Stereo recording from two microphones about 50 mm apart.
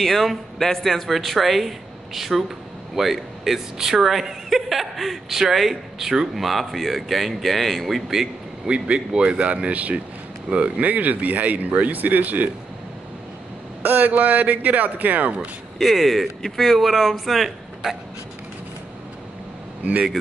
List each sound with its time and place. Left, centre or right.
0.0 s a woman's voice: centre
8.6 s speech: centre; by 12.4 s right
13.8 s speech: right
15.8 s a woman's voice: centre
19.8 s speech: right